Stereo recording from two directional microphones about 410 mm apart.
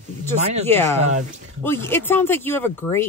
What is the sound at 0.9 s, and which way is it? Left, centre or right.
Speech, centre.